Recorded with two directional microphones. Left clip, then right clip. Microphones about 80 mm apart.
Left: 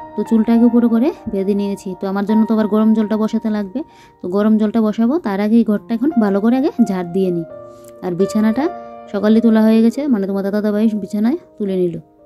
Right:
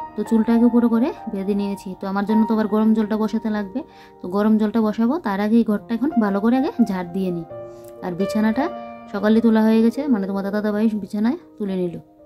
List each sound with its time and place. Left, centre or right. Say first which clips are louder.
0.1 s speech: left 4 dB; left